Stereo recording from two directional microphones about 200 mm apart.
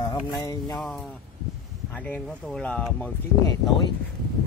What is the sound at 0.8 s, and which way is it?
Speech, centre (ahead or behind).